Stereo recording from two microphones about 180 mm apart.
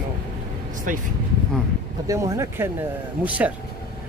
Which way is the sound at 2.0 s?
15° right (ahead or behind).